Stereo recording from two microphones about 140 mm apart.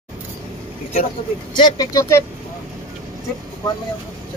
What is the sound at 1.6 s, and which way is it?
Speech, 25° left (ahead or behind).